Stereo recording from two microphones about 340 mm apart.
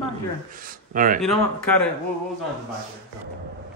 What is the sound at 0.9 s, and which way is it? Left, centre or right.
Speech, right.